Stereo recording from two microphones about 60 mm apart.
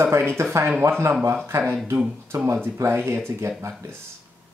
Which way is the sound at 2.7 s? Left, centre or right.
Right.